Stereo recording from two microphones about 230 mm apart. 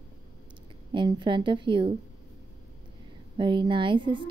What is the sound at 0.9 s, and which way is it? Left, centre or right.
Speech, right.